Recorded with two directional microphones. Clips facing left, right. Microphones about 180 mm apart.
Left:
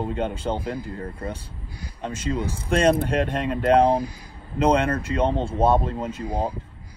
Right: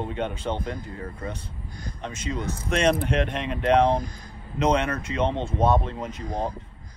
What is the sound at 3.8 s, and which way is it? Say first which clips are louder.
Speech: left 2 dB; 10° left (ahead or behind).